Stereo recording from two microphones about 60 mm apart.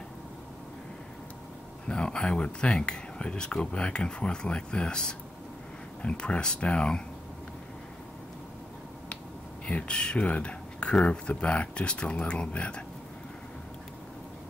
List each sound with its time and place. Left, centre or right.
1.9 s speech: centre
9.7 s speech: centre